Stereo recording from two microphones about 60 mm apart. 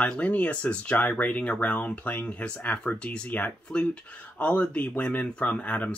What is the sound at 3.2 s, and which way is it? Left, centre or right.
Speech, left.